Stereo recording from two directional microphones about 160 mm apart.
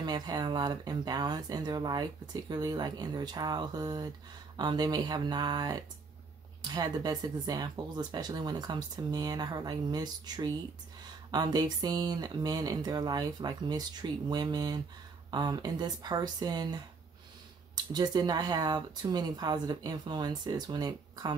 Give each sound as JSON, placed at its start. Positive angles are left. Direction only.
{"t": 0.0, "sound": "speech", "side_deg": -25}
{"t": 17.9, "sound": "speech", "side_deg": -25}